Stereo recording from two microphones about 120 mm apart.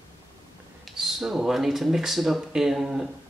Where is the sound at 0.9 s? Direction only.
Centre (ahead or behind).